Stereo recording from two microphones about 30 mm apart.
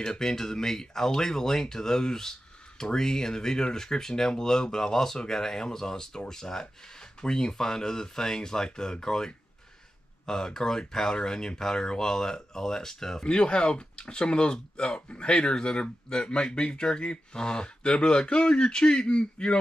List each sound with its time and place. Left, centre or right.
0.0 s speech: left
13.2 s speech: left